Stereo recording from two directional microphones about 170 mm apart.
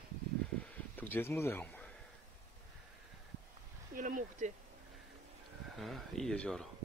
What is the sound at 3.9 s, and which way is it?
Speech, 50° right (ahead or behind).